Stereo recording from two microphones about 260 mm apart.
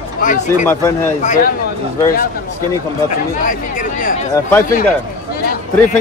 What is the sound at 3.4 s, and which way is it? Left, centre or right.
Speech, left.